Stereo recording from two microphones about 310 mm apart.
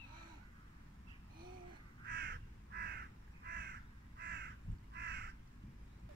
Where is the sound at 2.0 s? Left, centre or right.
Right.